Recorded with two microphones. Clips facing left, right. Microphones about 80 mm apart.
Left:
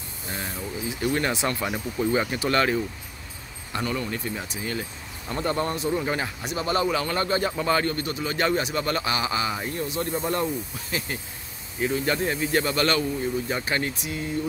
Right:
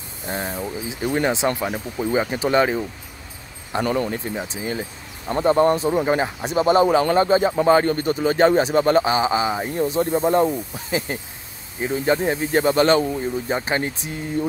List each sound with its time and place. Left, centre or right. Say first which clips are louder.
0.3 s a man's voice: right 6 dB; right
3.8 s speech: right 7 dB; right
4.1 s a man's voice: right 4 dB; right
5.7 s a man's voice: right 7 dB; right